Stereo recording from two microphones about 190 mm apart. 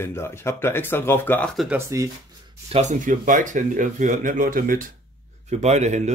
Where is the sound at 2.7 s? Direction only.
40° right (ahead or behind).